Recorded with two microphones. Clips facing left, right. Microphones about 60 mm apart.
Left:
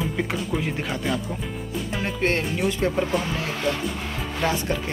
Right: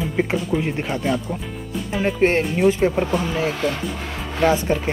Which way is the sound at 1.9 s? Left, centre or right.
Centre.